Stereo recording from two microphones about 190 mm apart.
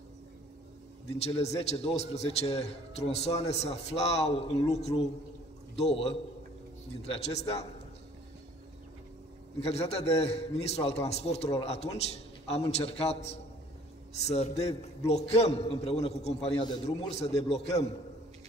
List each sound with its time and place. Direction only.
1.0 s a man's voice: 35° left (ahead or behind)
9.6 s a man's voice: 35° left (ahead or behind)